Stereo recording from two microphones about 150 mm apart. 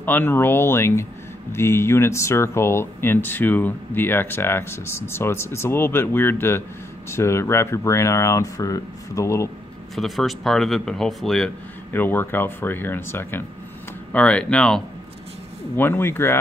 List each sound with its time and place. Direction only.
0.0 s speech: 10° left (ahead or behind)
9.9 s speech: centre (ahead or behind)
11.9 s speech: 15° left (ahead or behind)